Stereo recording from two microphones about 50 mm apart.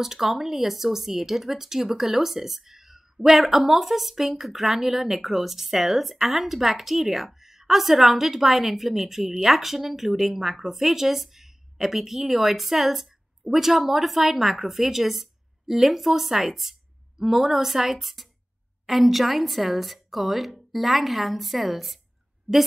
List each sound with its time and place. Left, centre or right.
0.0 s speech: centre